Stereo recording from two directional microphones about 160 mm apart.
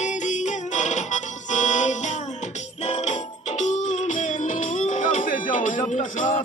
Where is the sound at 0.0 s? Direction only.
50° left (ahead or behind).